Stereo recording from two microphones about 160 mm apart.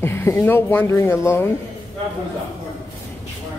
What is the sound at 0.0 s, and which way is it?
Speech, 15° left (ahead or behind).